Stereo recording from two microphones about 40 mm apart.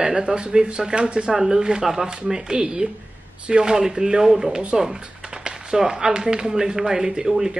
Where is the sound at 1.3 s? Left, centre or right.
Centre.